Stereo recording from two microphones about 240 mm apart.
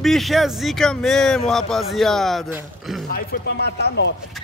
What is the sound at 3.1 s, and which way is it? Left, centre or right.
Speech, left.